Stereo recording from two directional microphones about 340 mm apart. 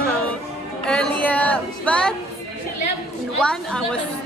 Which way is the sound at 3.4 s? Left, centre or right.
Centre.